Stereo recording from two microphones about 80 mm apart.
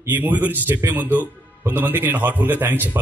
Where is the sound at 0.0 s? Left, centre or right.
Right.